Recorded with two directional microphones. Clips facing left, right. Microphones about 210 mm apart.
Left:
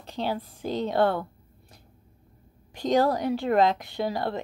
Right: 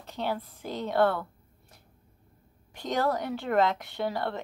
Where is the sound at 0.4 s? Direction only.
30° left (ahead or behind).